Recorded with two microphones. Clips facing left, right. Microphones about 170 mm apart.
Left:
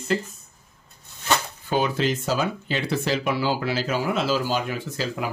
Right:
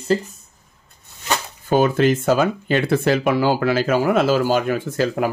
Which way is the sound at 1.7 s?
50° right (ahead or behind).